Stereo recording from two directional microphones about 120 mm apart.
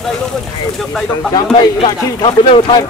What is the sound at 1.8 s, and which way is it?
Speech, 45° left (ahead or behind).